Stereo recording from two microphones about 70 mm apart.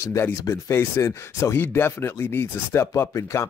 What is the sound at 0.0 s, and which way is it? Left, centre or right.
Speech, left.